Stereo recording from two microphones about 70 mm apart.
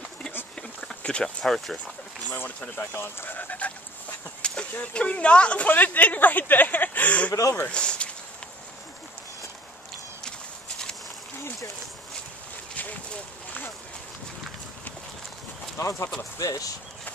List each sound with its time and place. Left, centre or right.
0.6 s insect: centre
1.4 s speech: centre
2.3 s speech: left
3.3 s speech: left
4.4 s a sound: centre
4.9 s speech: centre
7.6 s a sound: centre
12.7 s a sound: left
15.8 s speech: left